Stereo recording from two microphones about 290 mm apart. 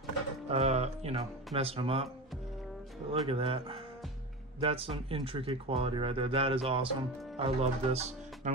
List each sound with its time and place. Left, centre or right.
0.5 s speech: right
3.1 s speech: centre